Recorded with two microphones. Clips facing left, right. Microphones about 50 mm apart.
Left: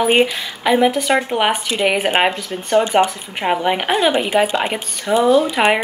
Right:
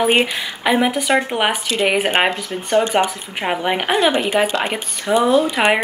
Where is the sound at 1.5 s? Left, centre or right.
Centre.